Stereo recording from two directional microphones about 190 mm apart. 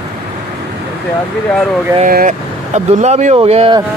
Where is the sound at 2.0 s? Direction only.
45° right (ahead or behind).